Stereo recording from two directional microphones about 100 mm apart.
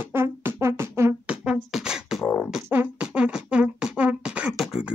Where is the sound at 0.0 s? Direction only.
25° right (ahead or behind).